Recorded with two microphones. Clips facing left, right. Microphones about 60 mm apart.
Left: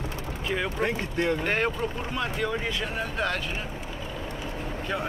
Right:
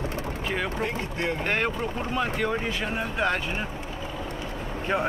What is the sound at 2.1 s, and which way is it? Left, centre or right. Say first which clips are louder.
Speech: right 3 dB; centre.